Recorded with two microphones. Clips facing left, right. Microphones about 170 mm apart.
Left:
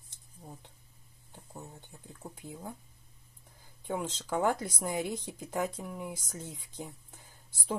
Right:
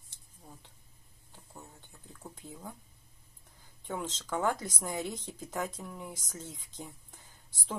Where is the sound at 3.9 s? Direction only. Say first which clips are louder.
Left 2 dB; 10° left (ahead or behind).